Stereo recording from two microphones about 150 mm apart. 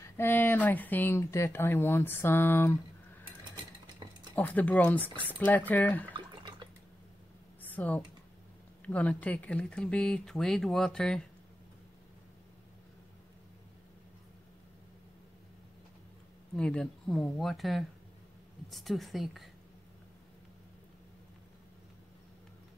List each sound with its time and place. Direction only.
0.2 s speech: 15° left (ahead or behind)
3.8 s a sound: 30° right (ahead or behind)
4.4 s speech: 10° left (ahead or behind)
6.1 s drip: 30° right (ahead or behind)
7.6 s computer keyboard: 10° left (ahead or behind)
8.8 s speech: 10° left (ahead or behind)
16.5 s speech: 5° left (ahead or behind)